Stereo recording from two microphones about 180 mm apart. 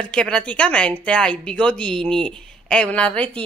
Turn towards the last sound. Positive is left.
turn(degrees=5)  # may be behind; listen again after turning